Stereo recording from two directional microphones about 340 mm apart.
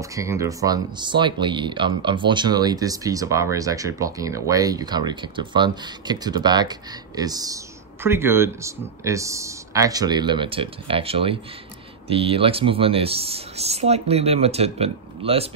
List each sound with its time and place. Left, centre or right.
0.0 s speech: centre